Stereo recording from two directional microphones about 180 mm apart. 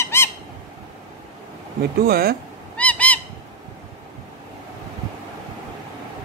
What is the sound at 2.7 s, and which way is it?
Honk, 5° left (ahead or behind).